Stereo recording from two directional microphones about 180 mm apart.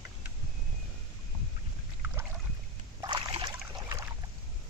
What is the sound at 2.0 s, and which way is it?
Boat, 10° right (ahead or behind).